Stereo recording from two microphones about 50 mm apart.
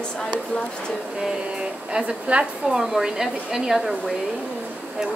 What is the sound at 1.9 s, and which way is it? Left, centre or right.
Speech, right.